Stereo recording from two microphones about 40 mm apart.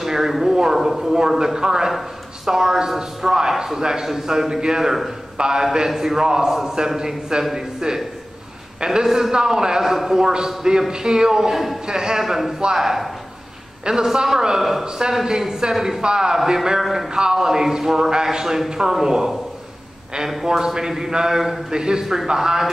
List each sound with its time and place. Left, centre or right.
0.0 s a sound: centre
1.4 s a man's voice: centre
11.5 s a man's voice: centre
11.8 s a man's voice: centre
15.2 s a man's voice: centre
20.4 s a man's voice: centre
22.0 s a man's voice: centre